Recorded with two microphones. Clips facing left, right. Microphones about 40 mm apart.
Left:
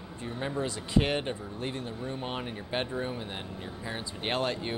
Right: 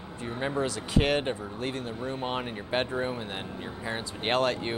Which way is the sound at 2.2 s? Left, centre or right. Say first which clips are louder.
Right 4 dB; centre.